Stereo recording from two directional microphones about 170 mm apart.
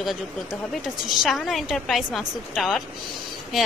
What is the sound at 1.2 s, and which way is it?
Speech, centre (ahead or behind).